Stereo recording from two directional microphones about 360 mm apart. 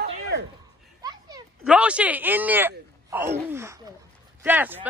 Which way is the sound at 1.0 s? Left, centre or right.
Centre.